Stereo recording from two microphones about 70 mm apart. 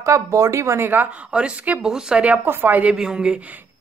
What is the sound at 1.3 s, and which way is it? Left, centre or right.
A woman's voice, centre.